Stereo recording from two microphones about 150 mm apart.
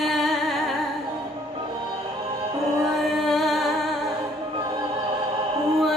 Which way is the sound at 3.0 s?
Centre (ahead or behind).